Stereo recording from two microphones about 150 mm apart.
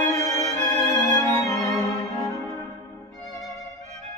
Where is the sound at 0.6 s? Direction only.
25° left (ahead or behind).